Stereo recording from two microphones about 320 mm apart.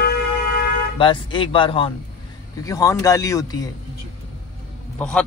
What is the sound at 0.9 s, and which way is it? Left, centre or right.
Speech, centre.